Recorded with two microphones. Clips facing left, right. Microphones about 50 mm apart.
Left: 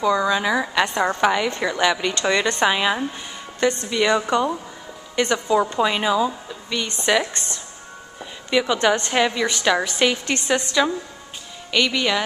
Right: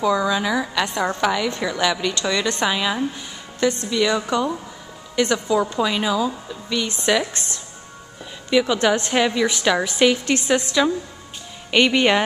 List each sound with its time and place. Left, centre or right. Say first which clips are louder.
0.0 s a woman's voice: even; centre
11.7 s speech: right 4 dB; right